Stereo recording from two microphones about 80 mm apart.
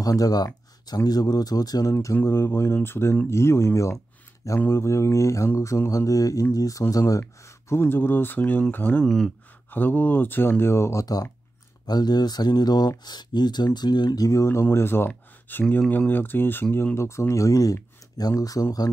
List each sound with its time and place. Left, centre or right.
0.0 s speech: left
7.8 s speech: left
9.0 s speech: centre
9.7 s speech: left
11.8 s speech: left